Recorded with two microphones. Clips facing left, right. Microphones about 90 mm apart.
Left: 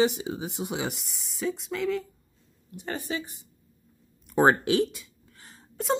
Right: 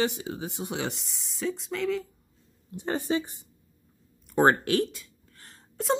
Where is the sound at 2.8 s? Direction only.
25° right (ahead or behind).